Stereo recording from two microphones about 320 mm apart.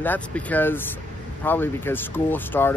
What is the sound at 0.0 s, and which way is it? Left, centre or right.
Speech, centre.